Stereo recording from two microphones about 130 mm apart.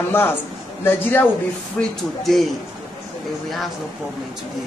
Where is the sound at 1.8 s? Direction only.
Centre (ahead or behind).